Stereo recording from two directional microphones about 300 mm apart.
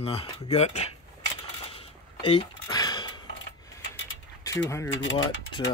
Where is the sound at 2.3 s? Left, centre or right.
Centre.